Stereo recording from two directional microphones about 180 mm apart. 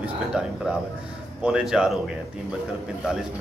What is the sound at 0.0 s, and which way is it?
A man's voice, 5° right (ahead or behind).